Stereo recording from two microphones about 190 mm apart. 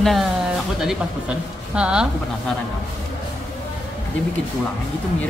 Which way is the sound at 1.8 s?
5° right (ahead or behind).